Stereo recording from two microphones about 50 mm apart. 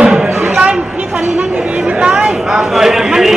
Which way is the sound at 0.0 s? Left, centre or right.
Centre.